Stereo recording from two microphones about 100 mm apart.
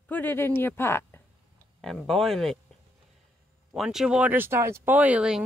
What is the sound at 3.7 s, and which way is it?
Speech, 5° right (ahead or behind).